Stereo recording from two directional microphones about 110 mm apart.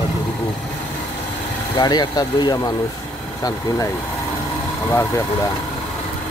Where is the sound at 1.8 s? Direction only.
40° left (ahead or behind).